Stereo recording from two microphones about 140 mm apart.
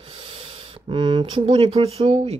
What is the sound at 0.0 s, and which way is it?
Speech, 40° right (ahead or behind).